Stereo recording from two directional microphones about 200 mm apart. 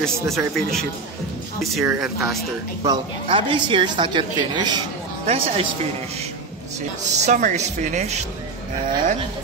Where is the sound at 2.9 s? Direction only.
25° right (ahead or behind).